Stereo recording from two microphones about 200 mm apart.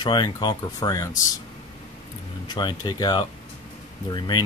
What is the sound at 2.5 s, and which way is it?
Speech, 25° left (ahead or behind).